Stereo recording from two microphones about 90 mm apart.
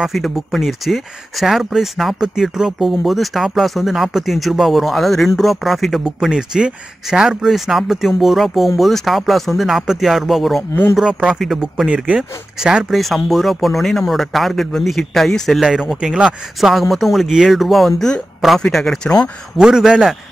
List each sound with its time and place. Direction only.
0.0 s speech: centre (ahead or behind)
10.7 s speech: 30° left (ahead or behind)
11.0 s speech: 10° right (ahead or behind)
13.0 s speech: centre (ahead or behind)